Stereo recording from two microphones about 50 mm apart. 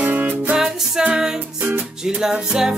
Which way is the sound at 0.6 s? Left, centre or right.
Centre.